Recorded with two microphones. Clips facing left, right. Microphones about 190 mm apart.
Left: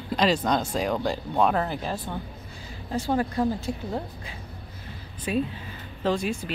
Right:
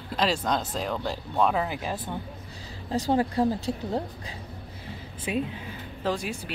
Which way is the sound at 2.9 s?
30° right (ahead or behind).